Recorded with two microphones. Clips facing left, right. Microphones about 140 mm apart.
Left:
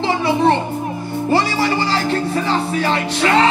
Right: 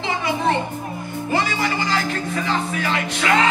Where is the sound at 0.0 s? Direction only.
35° left (ahead or behind).